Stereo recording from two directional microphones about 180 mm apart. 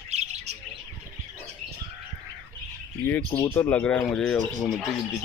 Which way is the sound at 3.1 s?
15° left (ahead or behind).